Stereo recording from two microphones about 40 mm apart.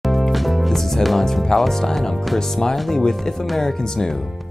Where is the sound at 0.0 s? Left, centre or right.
Centre.